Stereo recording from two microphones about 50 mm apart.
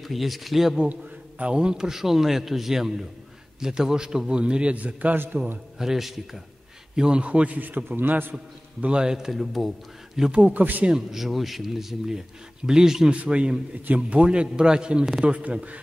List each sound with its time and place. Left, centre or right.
0.0 s speech: centre
1.4 s a man's voice: centre
5.1 s a man's voice: right
5.8 s speech: centre
7.0 s a man's voice: right
8.8 s a man's voice: centre
10.4 s a man's voice: right
10.9 s a man's voice: centre
13.1 s a man's voice: right